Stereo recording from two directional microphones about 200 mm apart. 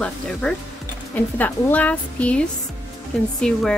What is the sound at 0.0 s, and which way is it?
A woman's voice, 5° left (ahead or behind).